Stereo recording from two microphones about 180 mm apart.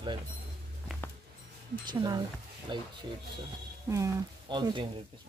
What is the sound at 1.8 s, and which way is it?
A woman's voice, 25° right (ahead or behind).